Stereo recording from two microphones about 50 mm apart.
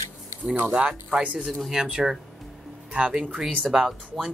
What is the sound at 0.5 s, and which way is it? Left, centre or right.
Speech, right.